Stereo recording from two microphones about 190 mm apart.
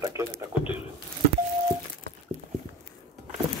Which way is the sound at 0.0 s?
15° right (ahead or behind).